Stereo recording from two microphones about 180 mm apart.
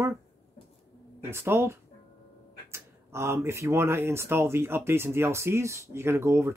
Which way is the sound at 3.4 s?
15° right (ahead or behind).